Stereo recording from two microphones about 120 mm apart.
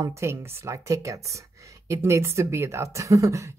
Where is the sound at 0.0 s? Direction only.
25° right (ahead or behind).